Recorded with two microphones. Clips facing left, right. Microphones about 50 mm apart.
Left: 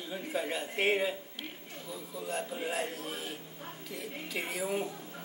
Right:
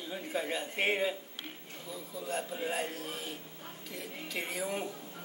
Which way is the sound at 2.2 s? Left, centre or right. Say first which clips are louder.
Even; centre.